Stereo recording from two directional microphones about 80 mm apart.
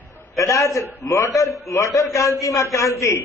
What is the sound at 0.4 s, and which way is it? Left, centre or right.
A man's voice, left.